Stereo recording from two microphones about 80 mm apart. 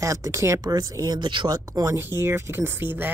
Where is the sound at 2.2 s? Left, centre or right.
Right.